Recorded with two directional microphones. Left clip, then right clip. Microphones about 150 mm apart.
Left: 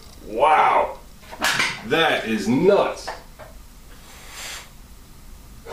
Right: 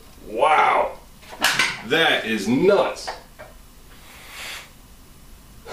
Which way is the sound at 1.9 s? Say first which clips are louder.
Even; 25° right (ahead or behind).